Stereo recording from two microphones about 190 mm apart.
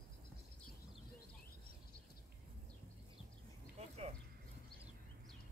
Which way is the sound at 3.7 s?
35° right (ahead or behind).